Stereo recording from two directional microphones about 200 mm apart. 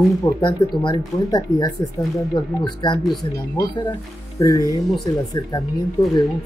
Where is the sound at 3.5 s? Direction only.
20° left (ahead or behind).